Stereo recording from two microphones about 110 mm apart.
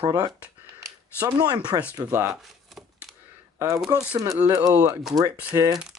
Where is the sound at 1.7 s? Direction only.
40° right (ahead or behind).